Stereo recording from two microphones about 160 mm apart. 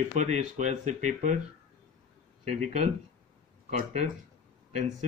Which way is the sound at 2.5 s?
45° right (ahead or behind).